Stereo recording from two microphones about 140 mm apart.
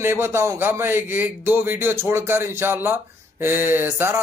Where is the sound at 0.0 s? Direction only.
20° right (ahead or behind).